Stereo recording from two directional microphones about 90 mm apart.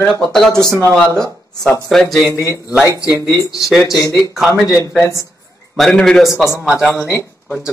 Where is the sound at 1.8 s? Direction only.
5° left (ahead or behind).